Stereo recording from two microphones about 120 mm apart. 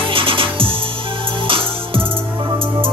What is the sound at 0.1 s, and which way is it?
Music, 50° right (ahead or behind).